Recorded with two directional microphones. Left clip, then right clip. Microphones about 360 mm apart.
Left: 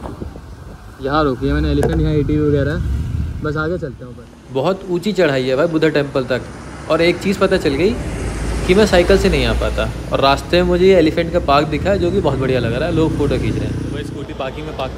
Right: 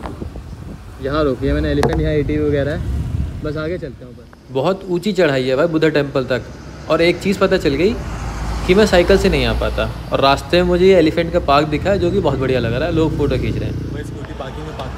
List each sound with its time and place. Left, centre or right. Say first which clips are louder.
1.0 s speech: left 1 dB; centre
1.9 s speech: even; left
4.6 s speech: even; centre